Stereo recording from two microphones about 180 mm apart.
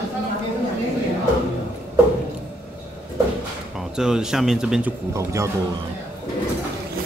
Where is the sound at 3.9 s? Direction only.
5° right (ahead or behind).